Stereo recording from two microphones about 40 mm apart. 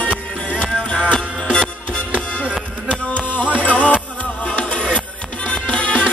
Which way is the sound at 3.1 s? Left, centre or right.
Left.